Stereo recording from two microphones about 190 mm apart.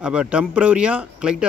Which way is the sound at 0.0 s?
5° right (ahead or behind).